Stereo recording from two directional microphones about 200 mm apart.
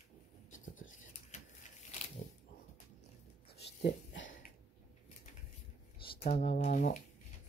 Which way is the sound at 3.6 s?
60° left (ahead or behind).